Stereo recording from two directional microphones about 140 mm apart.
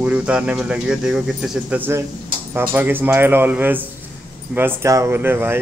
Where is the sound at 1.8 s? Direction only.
20° right (ahead or behind).